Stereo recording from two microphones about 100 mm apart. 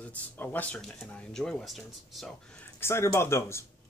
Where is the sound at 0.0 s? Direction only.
15° left (ahead or behind); by 2.3 s centre (ahead or behind).